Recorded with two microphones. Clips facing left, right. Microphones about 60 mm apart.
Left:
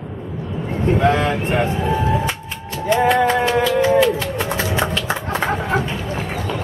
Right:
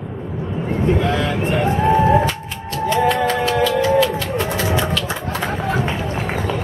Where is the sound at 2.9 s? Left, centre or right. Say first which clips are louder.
Left 2 dB; centre.